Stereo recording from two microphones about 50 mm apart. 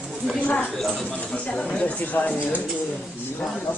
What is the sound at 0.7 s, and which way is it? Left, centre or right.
Speech, centre.